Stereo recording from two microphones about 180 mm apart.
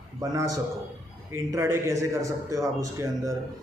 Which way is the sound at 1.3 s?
15° right (ahead or behind).